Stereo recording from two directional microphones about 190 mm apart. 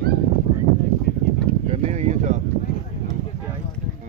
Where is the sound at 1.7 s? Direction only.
35° right (ahead or behind).